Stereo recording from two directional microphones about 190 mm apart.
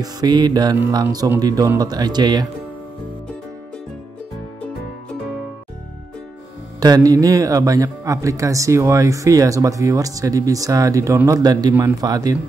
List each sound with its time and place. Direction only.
0.0 s speech: 20° right (ahead or behind)
6.8 s speech: 20° right (ahead or behind)